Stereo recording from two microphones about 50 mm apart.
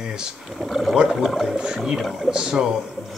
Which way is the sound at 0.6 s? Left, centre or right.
Centre.